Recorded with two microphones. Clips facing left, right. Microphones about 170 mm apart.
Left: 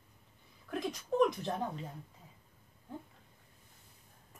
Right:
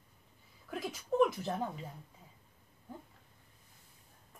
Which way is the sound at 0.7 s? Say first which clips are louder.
Left 1 dB; 5° right (ahead or behind).